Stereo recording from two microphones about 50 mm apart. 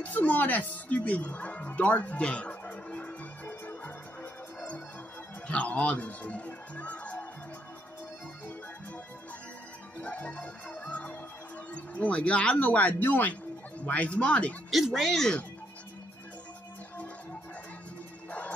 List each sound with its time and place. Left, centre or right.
0.0 s music: left
5.5 s speech: left
9.9 s music: left
11.7 s speech: left
14.7 s speech: centre
15.0 s speech: centre